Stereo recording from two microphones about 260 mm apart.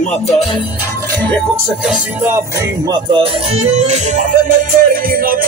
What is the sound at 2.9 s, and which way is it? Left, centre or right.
Music, centre.